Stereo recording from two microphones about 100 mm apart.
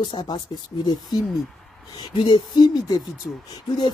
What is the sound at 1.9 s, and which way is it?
Speech, 50° left (ahead or behind).